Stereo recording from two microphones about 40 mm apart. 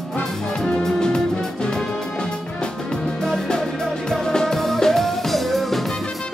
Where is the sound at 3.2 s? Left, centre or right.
Centre.